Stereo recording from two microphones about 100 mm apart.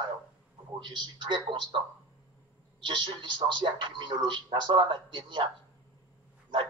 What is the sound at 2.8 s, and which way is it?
A man's voice, 50° right (ahead or behind).